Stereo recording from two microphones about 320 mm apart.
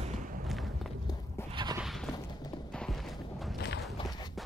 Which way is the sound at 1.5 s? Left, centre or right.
Centre.